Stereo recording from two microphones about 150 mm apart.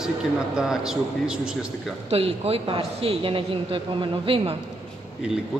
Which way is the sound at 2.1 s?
40° right (ahead or behind).